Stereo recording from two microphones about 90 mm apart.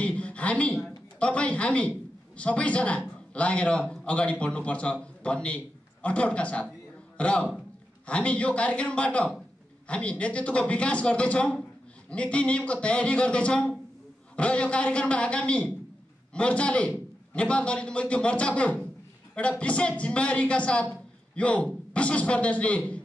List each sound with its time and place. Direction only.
0.0 s a woman's voice: 15° left (ahead or behind)